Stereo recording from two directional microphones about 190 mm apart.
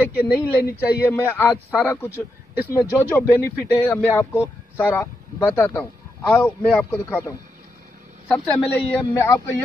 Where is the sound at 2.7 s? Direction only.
15° left (ahead or behind).